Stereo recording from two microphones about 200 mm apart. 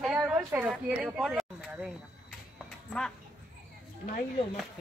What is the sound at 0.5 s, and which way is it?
Speech, 5° right (ahead or behind).